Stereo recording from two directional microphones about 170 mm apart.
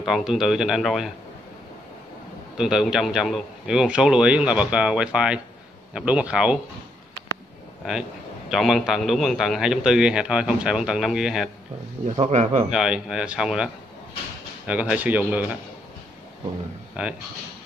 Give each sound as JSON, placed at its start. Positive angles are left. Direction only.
{"t": 0.0, "sound": "a man's voice", "side_deg": 0}
{"t": 2.5, "sound": "a man's voice", "side_deg": -5}
{"t": 8.5, "sound": "a man's voice", "side_deg": 0}
{"t": 12.2, "sound": "a man's voice", "side_deg": -40}
{"t": 12.6, "sound": "a man's voice", "side_deg": -5}
{"t": 14.7, "sound": "speech", "side_deg": -10}
{"t": 17.0, "sound": "speech", "side_deg": -5}